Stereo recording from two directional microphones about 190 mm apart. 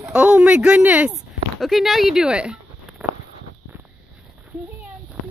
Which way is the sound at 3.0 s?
10° right (ahead or behind).